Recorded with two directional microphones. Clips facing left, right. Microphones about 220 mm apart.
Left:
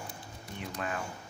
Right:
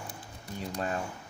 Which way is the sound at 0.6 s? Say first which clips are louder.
Right 3 dB; 35° right (ahead or behind).